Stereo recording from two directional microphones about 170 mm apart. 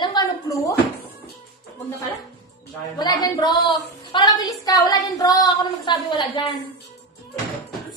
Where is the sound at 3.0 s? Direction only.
25° left (ahead or behind).